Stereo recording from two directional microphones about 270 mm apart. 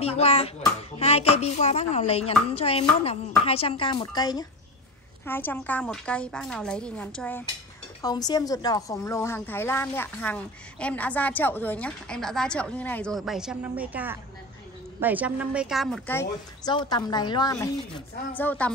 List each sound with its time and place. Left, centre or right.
0.0 s a child's voice: left; by 18.7 s centre